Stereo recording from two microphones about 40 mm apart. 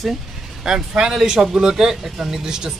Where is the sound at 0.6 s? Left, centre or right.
Centre.